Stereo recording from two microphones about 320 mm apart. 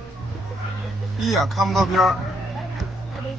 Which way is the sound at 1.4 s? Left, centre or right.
Centre.